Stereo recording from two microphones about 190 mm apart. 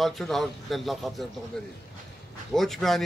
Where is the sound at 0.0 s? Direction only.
Centre (ahead or behind).